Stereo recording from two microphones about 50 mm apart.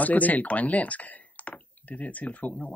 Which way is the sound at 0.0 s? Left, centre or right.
Left.